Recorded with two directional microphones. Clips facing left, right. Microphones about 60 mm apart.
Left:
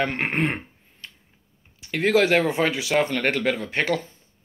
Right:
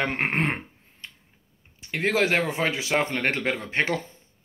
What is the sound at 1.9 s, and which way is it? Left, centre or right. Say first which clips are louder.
Speech: left 4 dB; centre.